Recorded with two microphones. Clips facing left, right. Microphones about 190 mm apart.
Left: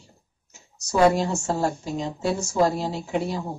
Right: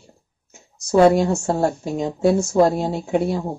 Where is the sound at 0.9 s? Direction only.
55° right (ahead or behind).